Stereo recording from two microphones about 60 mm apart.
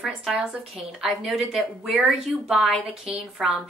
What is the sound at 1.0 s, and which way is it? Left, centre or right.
A woman's voice, centre.